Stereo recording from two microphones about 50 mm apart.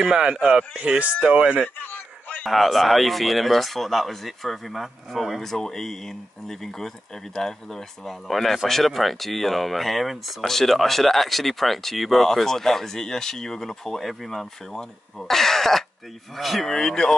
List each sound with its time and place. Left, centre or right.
0.0 s speech: centre
1.8 s a sound: left
2.4 s speech: centre
5.4 s speech: centre